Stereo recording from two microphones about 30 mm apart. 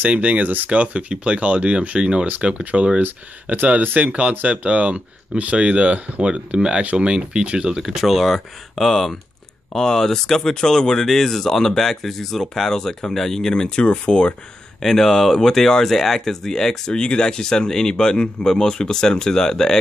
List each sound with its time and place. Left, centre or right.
0.1 s speech: right
2.6 s speech: right
4.6 s speech: right
7.7 s speech: centre
8.1 s speech: centre
10.5 s speech: left
13.5 s speech: left
14.8 s speech: centre